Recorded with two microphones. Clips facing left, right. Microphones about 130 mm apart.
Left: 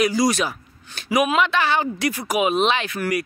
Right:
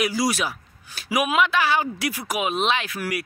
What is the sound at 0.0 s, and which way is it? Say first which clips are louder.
A man's voice: left 4 dB; 5° right (ahead or behind).